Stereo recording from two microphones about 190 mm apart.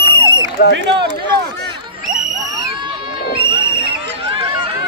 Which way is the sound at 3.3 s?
25° right (ahead or behind).